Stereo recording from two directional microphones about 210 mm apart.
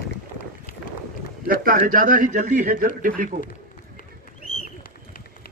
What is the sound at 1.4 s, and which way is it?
A man's voice, 40° right (ahead or behind).